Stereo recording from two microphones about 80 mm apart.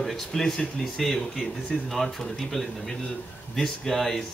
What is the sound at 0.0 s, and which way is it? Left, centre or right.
Speech, centre.